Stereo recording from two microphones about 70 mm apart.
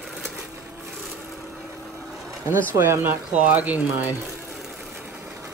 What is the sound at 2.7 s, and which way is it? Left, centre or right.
Speech, right.